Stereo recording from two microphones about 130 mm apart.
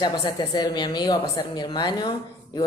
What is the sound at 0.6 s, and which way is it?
A woman's voice, 30° left (ahead or behind).